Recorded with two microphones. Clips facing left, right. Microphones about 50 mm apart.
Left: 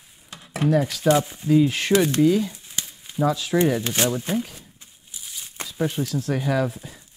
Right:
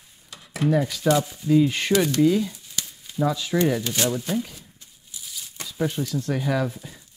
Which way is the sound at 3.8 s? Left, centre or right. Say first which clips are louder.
Left 1 dB; left.